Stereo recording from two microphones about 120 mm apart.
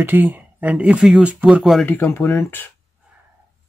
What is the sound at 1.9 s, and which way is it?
Speech, 20° left (ahead or behind).